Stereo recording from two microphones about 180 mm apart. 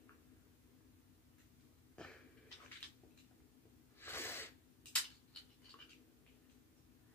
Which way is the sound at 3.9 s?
15° left (ahead or behind).